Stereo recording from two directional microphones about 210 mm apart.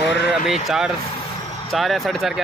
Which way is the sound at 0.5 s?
Centre (ahead or behind).